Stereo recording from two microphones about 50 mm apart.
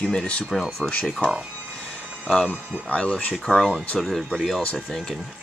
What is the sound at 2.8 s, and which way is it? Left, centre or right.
Speech, left.